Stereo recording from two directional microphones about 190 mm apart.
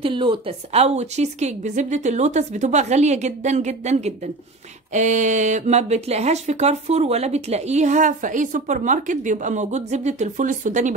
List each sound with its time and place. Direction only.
0.0 s speech: 25° right (ahead or behind)